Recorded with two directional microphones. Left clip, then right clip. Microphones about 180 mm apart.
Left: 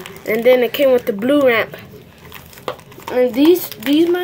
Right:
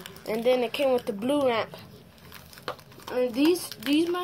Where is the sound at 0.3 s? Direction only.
25° left (ahead or behind).